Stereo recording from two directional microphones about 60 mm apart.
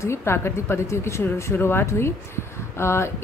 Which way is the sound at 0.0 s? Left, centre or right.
Left.